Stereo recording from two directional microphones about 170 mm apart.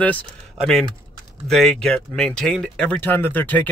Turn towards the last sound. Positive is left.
turn(degrees=10)  # may be behind; listen again after turning